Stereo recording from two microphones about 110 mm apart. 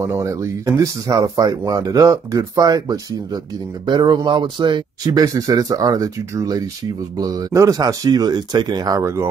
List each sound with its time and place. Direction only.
0.0 s speech: 25° right (ahead or behind)